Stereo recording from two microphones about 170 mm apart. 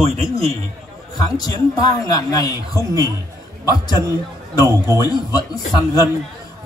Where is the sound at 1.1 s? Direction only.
20° left (ahead or behind).